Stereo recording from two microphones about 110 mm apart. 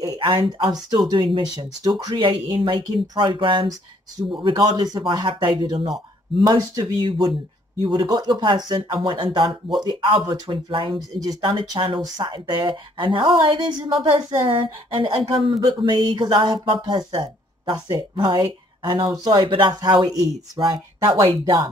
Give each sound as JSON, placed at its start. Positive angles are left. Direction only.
{"t": 0.2, "sound": "speech", "side_deg": -45}
{"t": 6.5, "sound": "speech", "side_deg": -35}
{"t": 21.0, "sound": "speech", "side_deg": -45}